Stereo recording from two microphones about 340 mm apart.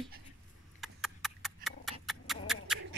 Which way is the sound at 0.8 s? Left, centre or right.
Centre.